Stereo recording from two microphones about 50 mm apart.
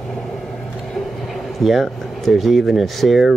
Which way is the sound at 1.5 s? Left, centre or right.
Centre.